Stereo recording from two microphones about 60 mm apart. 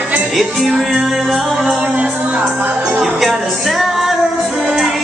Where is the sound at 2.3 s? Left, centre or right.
Right.